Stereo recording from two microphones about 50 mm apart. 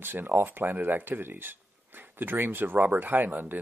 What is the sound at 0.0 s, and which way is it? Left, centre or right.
Speech, right.